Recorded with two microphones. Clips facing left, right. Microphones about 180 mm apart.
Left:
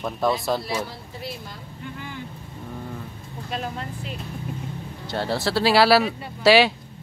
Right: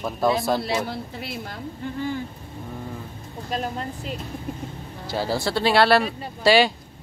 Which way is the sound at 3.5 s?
40° right (ahead or behind).